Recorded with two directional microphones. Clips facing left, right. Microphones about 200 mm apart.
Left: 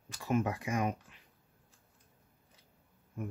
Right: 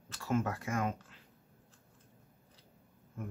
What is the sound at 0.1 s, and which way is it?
Speech, 15° left (ahead or behind).